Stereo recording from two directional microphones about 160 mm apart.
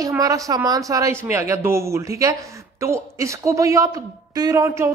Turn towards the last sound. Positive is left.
turn(degrees=-20)  # may be behind; listen again after turning